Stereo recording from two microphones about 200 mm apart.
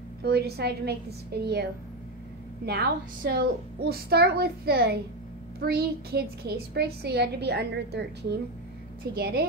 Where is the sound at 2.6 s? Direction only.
50° right (ahead or behind).